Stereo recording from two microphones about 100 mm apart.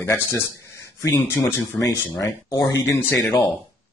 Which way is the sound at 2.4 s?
45° left (ahead or behind).